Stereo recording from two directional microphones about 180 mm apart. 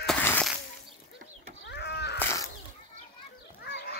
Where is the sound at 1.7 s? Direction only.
70° left (ahead or behind).